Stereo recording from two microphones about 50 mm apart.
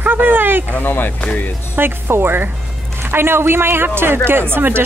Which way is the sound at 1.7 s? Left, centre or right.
Right.